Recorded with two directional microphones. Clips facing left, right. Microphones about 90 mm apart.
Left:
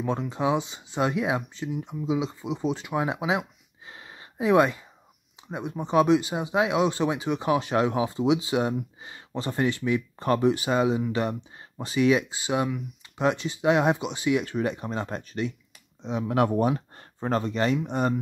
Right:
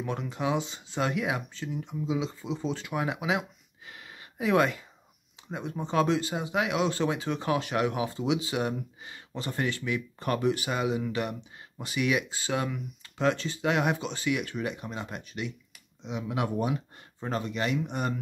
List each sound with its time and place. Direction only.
0.0 s speech: 25° left (ahead or behind)
12.4 s speech: 15° left (ahead or behind)